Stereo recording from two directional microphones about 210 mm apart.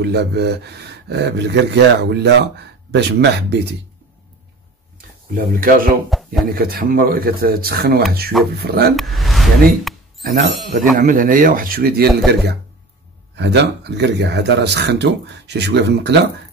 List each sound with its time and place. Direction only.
0.0 s speech: 55° right (ahead or behind)
5.6 s speech: 40° right (ahead or behind)
6.0 s a sound: centre (ahead or behind)
6.5 s speech: 45° right (ahead or behind)
8.9 s speech: centre (ahead or behind)
10.2 s speech: 45° right (ahead or behind)
13.4 s speech: 55° right (ahead or behind)